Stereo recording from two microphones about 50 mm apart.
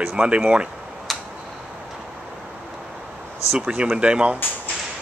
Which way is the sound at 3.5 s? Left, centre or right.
Right.